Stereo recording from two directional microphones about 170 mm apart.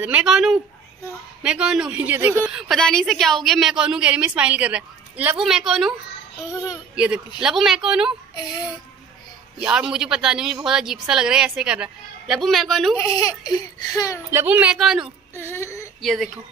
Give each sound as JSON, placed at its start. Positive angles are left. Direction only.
{"t": 0.0, "sound": "a woman's voice", "side_deg": -5}
{"t": 6.5, "sound": "speech", "side_deg": 20}
{"t": 7.4, "sound": "a woman's voice", "side_deg": 0}
{"t": 9.6, "sound": "a woman's voice", "side_deg": -5}
{"t": 12.9, "sound": "speech", "side_deg": 20}
{"t": 14.3, "sound": "speech", "side_deg": -10}
{"t": 15.3, "sound": "a sound", "side_deg": 15}
{"t": 16.0, "sound": "a woman's voice", "side_deg": 0}